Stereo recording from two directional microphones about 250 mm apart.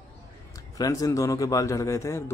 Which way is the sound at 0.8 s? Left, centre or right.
Centre.